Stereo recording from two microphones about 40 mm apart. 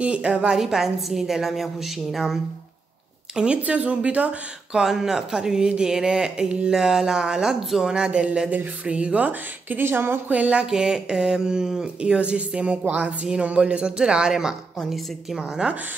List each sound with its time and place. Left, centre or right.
0.0 s a woman's voice: right
0.6 s speech: centre
3.3 s speech: right
4.7 s speech: centre; by 9.8 s right
9.8 s speech: right
10.2 s speech: right
10.7 s speech: centre
12.0 s a woman's voice: right
13.9 s speech: centre
14.9 s a woman's voice: centre